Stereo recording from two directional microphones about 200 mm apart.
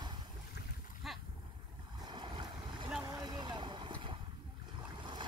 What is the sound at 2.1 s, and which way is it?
Boat, 25° right (ahead or behind).